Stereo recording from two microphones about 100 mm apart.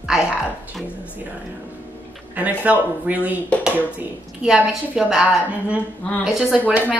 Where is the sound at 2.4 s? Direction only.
15° right (ahead or behind).